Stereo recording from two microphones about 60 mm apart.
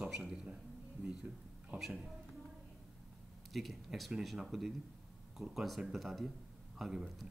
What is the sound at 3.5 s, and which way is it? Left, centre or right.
Speech, centre.